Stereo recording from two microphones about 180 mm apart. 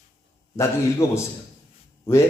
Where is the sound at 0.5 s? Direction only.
15° left (ahead or behind).